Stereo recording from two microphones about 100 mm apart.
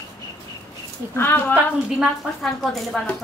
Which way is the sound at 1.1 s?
20° left (ahead or behind).